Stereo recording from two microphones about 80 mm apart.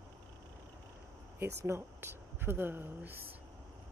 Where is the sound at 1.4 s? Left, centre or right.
Right.